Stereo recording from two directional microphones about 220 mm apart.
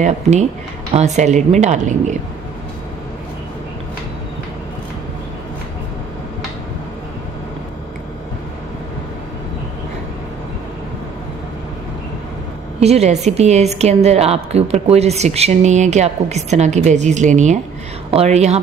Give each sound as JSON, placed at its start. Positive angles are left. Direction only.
{"t": 0.0, "sound": "a woman's voice", "side_deg": -30}
{"t": 12.8, "sound": "a woman's voice", "side_deg": -30}